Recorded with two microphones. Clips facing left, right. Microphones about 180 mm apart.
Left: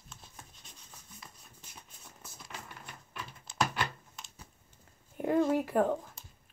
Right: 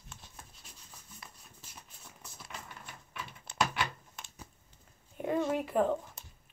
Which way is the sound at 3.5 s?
60° right (ahead or behind).